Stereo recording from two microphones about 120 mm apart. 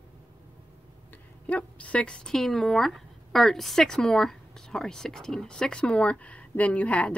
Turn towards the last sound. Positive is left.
turn(degrees=10)  # may be behind; listen again after turning